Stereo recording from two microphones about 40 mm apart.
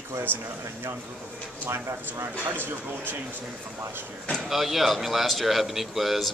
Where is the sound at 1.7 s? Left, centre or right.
Right.